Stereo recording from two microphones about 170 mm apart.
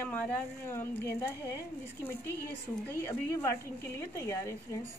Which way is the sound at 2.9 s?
15° left (ahead or behind).